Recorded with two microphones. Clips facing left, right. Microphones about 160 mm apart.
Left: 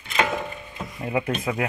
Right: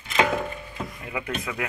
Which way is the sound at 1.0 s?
35° left (ahead or behind).